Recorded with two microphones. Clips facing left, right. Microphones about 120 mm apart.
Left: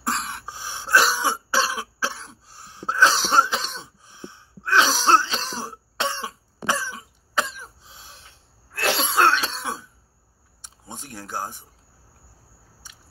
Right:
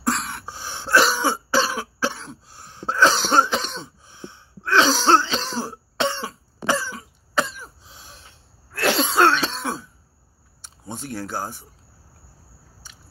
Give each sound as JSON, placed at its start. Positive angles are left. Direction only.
{"t": 0.0, "sound": "cough", "side_deg": 20}
{"t": 8.8, "sound": "cough", "side_deg": 25}
{"t": 9.2, "sound": "cough", "side_deg": 10}
{"t": 10.6, "sound": "a sound", "side_deg": 15}